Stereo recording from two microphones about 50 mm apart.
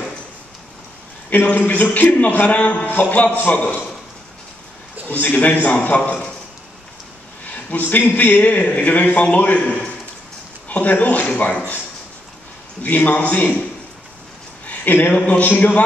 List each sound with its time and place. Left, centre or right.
1.3 s a man's voice: left
5.2 s a man's voice: left
7.5 s a sound: left
8.1 s a man's voice: left
12.8 s a man's voice: left
14.7 s speech: left
15.1 s a man's voice: left